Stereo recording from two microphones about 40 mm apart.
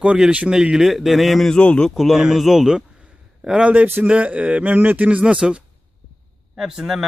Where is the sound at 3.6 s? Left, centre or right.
Right.